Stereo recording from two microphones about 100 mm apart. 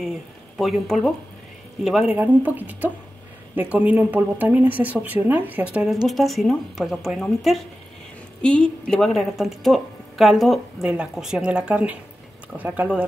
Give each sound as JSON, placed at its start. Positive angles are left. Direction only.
{"t": 0.6, "sound": "a woman's voice", "side_deg": 0}
{"t": 2.0, "sound": "speech", "side_deg": -20}
{"t": 6.0, "sound": "a woman's voice", "side_deg": 0}